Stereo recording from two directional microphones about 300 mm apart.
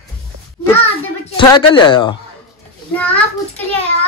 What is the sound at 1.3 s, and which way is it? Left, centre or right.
Speech, centre.